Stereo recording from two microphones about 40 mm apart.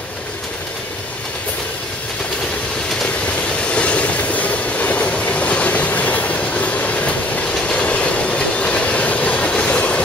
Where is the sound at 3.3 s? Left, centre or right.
Left.